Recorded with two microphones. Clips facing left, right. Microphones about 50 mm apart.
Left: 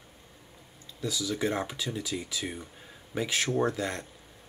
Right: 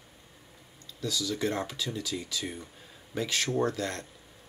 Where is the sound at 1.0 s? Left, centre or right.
Centre.